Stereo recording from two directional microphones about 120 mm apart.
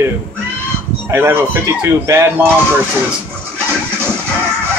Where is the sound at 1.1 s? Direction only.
20° right (ahead or behind).